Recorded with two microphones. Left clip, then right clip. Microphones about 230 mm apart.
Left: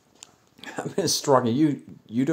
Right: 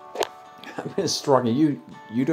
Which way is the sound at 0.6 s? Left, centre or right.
Centre.